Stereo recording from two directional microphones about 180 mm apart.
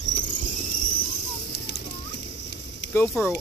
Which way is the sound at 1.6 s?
65° left (ahead or behind).